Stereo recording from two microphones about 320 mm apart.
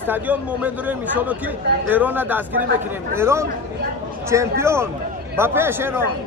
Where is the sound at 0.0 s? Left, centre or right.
Centre.